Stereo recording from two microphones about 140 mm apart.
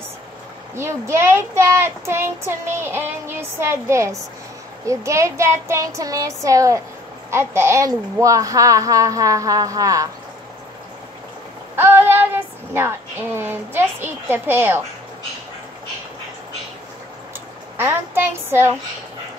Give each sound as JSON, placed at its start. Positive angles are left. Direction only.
{"t": 0.7, "sound": "a woman's voice", "side_deg": -20}
{"t": 11.7, "sound": "speech", "side_deg": -15}
{"t": 17.7, "sound": "speech", "side_deg": -15}